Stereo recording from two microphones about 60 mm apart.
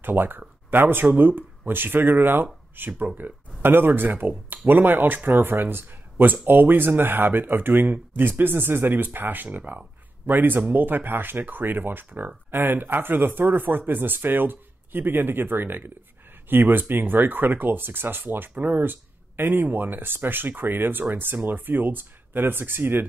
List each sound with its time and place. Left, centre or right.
0.0 s speech: right
9.6 s speech: right
10.2 s speech: right